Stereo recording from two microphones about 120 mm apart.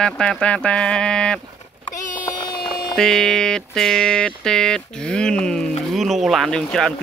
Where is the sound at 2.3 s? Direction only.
40° left (ahead or behind).